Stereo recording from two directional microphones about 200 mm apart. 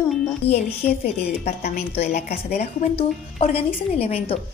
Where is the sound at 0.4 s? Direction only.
30° left (ahead or behind).